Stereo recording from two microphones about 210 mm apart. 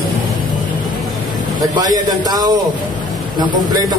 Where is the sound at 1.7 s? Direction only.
20° right (ahead or behind).